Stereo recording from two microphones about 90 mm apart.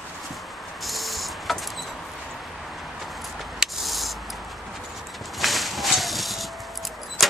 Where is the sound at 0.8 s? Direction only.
Centre (ahead or behind).